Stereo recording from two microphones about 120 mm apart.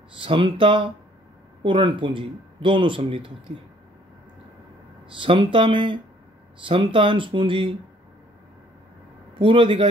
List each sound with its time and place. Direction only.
0.2 s speech: 45° right (ahead or behind)
5.1 s speech: 45° right (ahead or behind)
9.3 s a man's voice: 45° right (ahead or behind)